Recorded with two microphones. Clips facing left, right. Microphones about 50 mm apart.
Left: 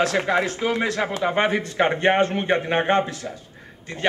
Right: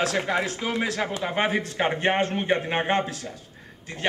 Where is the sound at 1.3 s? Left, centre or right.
Centre.